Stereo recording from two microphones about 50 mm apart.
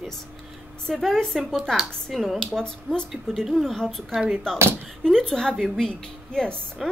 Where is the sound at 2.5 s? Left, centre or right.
Centre.